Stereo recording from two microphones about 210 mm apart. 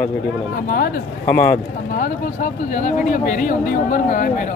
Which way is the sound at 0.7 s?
45° left (ahead or behind).